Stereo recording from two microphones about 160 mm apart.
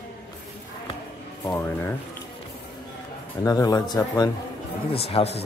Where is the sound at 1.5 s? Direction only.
15° left (ahead or behind).